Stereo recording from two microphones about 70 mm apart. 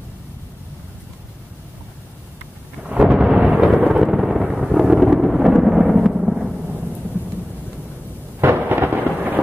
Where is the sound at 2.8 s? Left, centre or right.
Centre.